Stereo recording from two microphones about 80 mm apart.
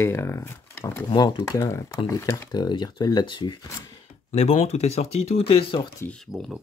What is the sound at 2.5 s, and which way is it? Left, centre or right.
Speech, left.